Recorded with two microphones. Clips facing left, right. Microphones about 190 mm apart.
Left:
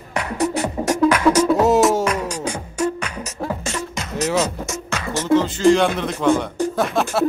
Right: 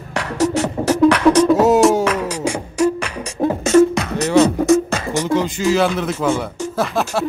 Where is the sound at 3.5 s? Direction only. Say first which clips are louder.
Right 18 dB; 45° right (ahead or behind).